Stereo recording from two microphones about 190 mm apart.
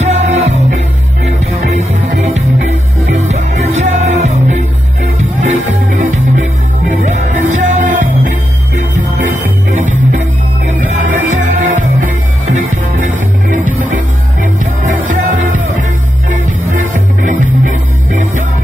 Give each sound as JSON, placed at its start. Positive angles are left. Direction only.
{"t": 0.0, "sound": "music", "side_deg": -35}
{"t": 2.0, "sound": "music", "side_deg": -40}
{"t": 10.9, "sound": "music", "side_deg": -40}
{"t": 17.2, "sound": "music", "side_deg": -40}